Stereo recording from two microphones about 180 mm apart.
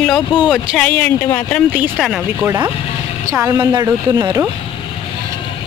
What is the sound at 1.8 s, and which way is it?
Speech, centre (ahead or behind).